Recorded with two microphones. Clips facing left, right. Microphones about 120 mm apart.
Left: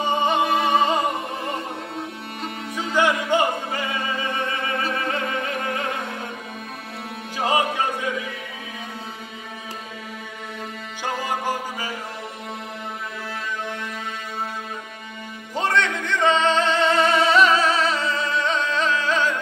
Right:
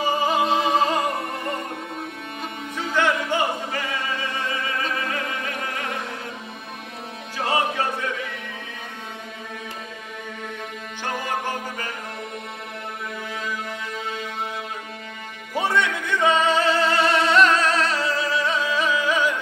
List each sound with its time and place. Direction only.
0.0 s music: 5° right (ahead or behind)
0.7 s opera: centre (ahead or behind)
2.7 s music: 15° left (ahead or behind)
7.3 s music: 15° left (ahead or behind)
11.1 s music: 10° left (ahead or behind)
15.5 s music: 10° right (ahead or behind)